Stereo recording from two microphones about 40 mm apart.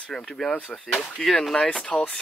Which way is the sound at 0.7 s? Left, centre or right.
Left.